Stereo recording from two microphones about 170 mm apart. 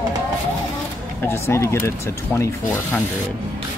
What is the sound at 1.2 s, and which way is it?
Speech, 15° left (ahead or behind).